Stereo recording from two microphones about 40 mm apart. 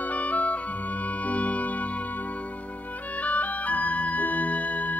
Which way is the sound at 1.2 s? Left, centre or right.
Left.